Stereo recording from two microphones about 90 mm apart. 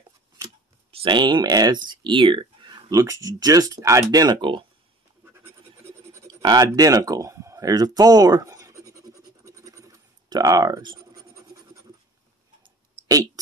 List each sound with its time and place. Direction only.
0.9 s speech: 60° right (ahead or behind)
3.0 s speech: 40° right (ahead or behind)
4.4 s speech: 65° right (ahead or behind)
5.2 s scratch: 25° right (ahead or behind)
6.4 s a sound: 45° right (ahead or behind)
11.0 s scratch: 40° right (ahead or behind)